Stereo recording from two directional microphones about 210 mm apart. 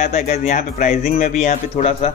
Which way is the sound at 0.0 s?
35° left (ahead or behind).